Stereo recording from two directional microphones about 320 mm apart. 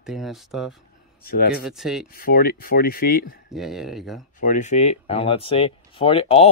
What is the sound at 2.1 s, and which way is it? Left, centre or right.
Speech, left.